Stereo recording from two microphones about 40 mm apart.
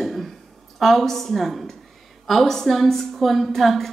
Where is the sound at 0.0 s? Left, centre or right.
Centre.